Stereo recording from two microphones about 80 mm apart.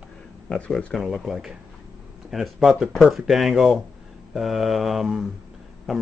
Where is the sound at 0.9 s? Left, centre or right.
Centre.